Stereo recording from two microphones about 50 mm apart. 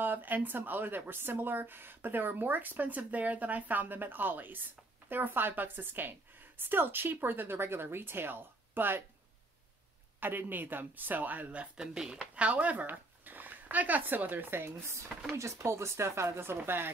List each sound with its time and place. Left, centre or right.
0.0 s speech: right
10.2 s speech: right
11.8 s speech: centre
12.4 s speech: right
15.3 s speech: right
16.6 s speech: right